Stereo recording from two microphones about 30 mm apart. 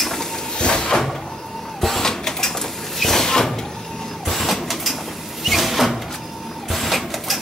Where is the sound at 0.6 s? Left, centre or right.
Left.